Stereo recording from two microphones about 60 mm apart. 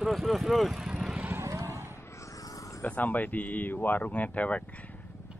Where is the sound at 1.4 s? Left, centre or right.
Right.